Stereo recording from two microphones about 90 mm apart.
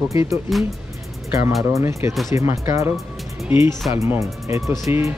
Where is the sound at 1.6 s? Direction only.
35° right (ahead or behind).